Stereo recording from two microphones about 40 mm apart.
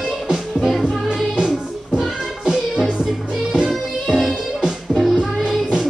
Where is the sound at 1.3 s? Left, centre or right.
Right.